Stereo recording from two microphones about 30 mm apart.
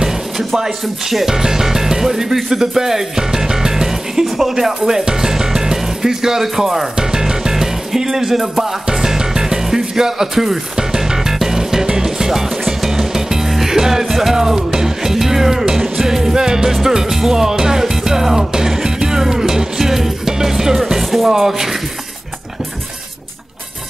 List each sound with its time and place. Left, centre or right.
0.0 s music: centre
2.5 s speech: centre
7.0 s music: right
10.8 s music: right
20.8 s speech: centre
21.4 s music: centre